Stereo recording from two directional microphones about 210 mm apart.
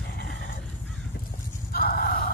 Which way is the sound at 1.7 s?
45° left (ahead or behind).